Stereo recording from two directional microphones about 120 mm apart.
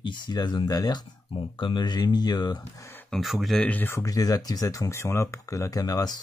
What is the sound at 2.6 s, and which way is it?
Speech, 20° left (ahead or behind).